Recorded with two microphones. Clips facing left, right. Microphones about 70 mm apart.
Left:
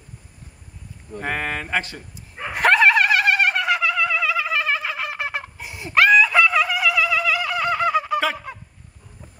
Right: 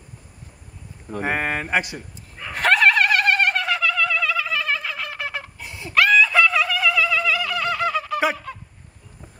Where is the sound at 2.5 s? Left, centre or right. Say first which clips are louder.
Left 1 dB; centre.